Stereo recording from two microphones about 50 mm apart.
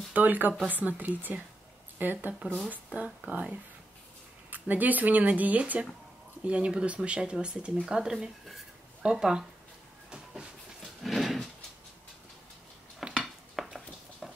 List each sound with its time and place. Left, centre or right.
0.1 s speech: right; by 9.4 s centre
11.0 s horse: centre
13.0 s dishes: centre
13.6 s a sound: centre